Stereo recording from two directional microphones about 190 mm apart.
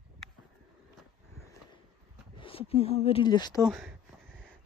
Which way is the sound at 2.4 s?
30° left (ahead or behind).